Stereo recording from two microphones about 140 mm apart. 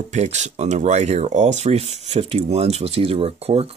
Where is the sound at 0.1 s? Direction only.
55° right (ahead or behind).